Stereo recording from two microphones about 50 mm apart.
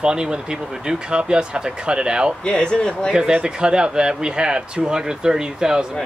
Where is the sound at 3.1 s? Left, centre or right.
Centre.